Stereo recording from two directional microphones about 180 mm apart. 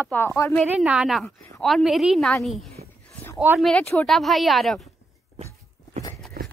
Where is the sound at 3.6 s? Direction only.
5° left (ahead or behind).